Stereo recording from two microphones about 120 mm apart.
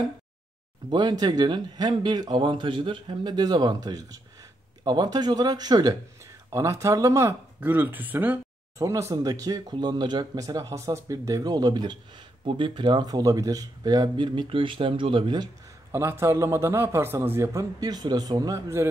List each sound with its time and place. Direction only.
0.8 s a man's voice: 40° right (ahead or behind); by 8.4 s 15° right (ahead or behind)
8.7 s speech: 25° right (ahead or behind)
15.9 s a man's voice: 20° right (ahead or behind)